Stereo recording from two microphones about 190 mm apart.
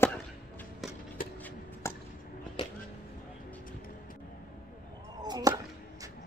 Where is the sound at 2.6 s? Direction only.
25° left (ahead or behind).